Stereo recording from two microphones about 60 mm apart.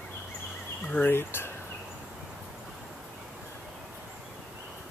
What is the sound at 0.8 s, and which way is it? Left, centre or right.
Speech, left.